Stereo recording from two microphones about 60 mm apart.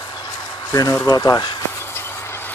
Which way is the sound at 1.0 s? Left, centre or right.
Left.